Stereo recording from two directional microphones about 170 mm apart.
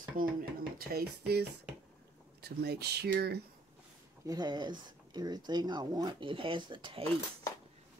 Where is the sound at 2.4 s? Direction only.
70° right (ahead or behind).